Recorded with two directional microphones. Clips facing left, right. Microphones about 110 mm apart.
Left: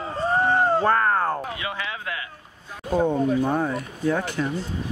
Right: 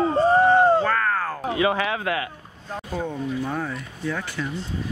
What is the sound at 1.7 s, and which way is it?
Speech, 75° right (ahead or behind).